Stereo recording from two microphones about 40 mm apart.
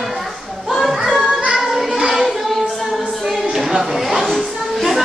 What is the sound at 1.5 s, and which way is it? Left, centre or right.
Music, centre.